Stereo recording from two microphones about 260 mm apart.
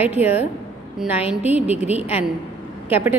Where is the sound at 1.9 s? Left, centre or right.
Left.